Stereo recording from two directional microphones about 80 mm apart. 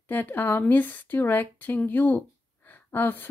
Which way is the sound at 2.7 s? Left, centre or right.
Left.